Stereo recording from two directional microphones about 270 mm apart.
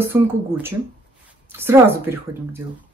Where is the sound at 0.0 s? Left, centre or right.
Centre.